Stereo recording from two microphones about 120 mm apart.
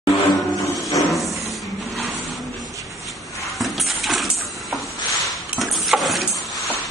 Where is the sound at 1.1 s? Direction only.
Centre (ahead or behind).